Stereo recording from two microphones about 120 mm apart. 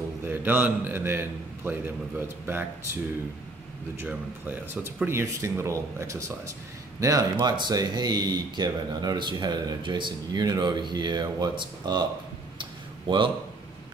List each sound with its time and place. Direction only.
0.2 s a man's voice: 20° right (ahead or behind)
4.0 s speech: 15° right (ahead or behind); by 12.0 s 40° right (ahead or behind)
12.5 s a sound: 45° right (ahead or behind)